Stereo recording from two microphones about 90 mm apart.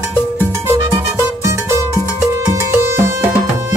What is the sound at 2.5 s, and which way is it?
Music, 30° right (ahead or behind).